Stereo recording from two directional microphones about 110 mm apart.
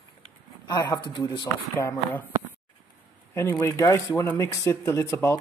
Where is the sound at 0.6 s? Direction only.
35° left (ahead or behind).